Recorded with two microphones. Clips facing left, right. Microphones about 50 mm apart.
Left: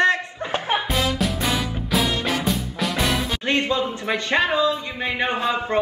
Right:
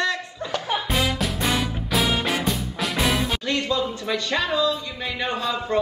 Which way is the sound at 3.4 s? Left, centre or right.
Left.